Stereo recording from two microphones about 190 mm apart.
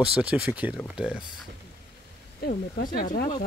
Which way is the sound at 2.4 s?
50° left (ahead or behind).